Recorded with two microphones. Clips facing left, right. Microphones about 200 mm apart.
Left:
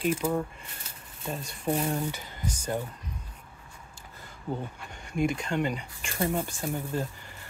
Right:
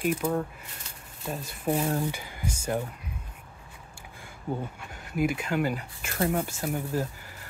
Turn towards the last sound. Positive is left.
turn(degrees=-5)  # may be behind; listen again after turning